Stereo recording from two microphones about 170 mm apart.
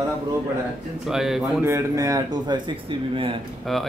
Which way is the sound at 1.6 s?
20° right (ahead or behind).